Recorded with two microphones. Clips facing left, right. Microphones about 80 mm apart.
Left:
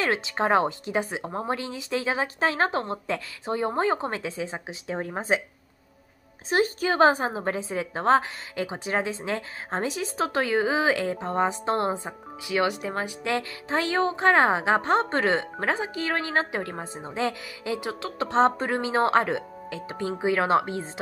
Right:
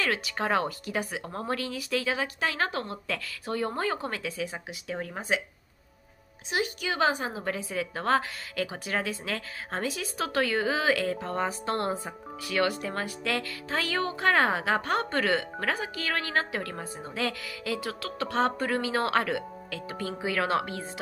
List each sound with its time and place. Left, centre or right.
0.0 s a woman's voice: left
6.5 s a woman's voice: left